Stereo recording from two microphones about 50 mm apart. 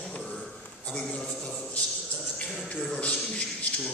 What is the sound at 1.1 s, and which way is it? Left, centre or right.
Music, left.